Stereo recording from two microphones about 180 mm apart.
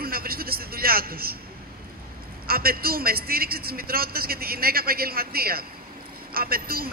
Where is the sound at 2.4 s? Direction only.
55° right (ahead or behind).